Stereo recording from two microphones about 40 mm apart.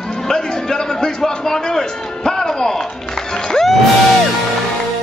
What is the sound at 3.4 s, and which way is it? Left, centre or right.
Music, centre.